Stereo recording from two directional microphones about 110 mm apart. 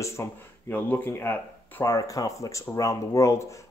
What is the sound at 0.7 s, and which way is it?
Speech, 15° left (ahead or behind).